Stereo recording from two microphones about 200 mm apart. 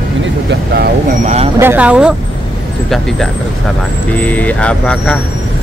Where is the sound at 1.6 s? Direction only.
10° right (ahead or behind).